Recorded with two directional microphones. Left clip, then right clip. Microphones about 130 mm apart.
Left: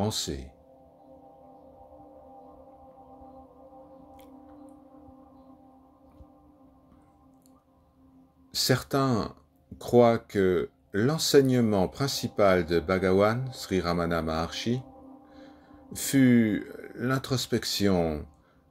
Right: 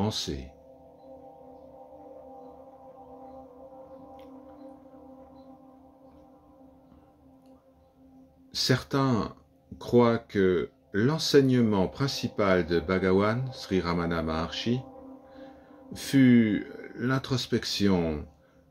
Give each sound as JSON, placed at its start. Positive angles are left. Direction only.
{"t": 0.0, "sound": "speech", "side_deg": 15}
{"t": 8.5, "sound": "speech", "side_deg": 15}